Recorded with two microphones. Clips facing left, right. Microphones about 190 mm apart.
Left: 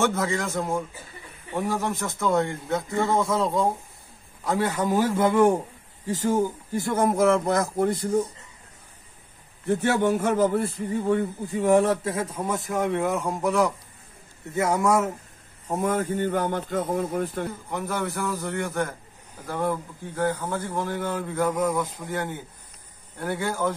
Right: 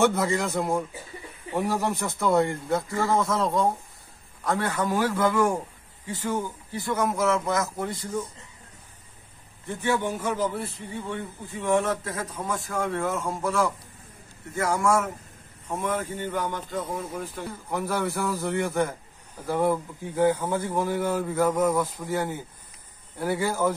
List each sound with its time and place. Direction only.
0.0 s a man's voice: 15° right (ahead or behind)
4.5 s a man's voice: 15° left (ahead or behind)
6.0 s speech: 40° left (ahead or behind)
9.7 s a man's voice: 65° left (ahead or behind)
10.1 s a man's voice: 50° left (ahead or behind); by 15.0 s 20° left (ahead or behind)
15.7 s speech: 45° left (ahead or behind)
17.6 s a man's voice: 5° right (ahead or behind)